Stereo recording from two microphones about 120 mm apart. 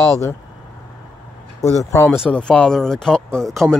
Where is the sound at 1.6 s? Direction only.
25° left (ahead or behind).